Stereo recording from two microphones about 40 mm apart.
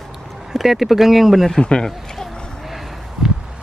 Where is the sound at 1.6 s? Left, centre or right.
Left.